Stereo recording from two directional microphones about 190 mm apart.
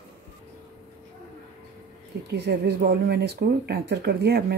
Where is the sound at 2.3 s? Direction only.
60° right (ahead or behind).